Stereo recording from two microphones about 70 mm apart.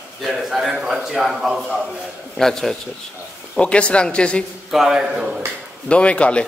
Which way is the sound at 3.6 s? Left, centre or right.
Centre.